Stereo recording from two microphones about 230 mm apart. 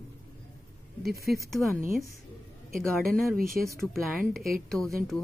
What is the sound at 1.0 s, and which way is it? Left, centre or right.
Speech, right.